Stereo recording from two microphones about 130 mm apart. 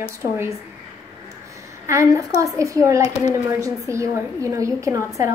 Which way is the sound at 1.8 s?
25° right (ahead or behind).